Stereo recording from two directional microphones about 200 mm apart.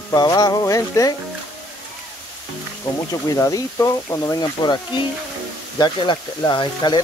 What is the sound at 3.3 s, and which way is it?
Speech, 15° left (ahead or behind).